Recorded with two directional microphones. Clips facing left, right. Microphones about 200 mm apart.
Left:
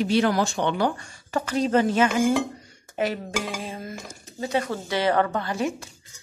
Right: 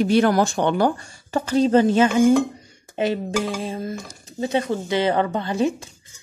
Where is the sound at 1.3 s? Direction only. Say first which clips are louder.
Right 5 dB; 30° right (ahead or behind).